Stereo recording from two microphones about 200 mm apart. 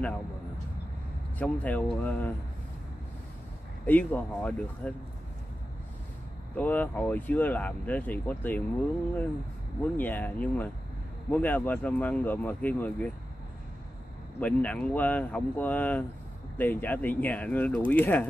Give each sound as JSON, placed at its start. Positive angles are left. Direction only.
{"t": 1.4, "sound": "speech", "side_deg": 5}
{"t": 3.8, "sound": "speech", "side_deg": 10}
{"t": 6.5, "sound": "speech", "side_deg": 10}
{"t": 9.9, "sound": "speech", "side_deg": 10}
{"t": 14.4, "sound": "speech", "side_deg": 5}